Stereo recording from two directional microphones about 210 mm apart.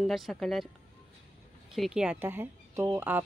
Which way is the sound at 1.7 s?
Centre (ahead or behind).